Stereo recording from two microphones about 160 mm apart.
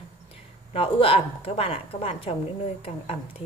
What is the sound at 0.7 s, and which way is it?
A woman's voice, 35° left (ahead or behind).